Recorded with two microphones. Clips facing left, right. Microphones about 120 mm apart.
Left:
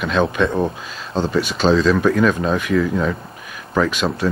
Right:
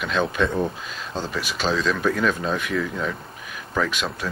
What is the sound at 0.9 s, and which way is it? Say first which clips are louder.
Speech: left 8 dB; centre (ahead or behind).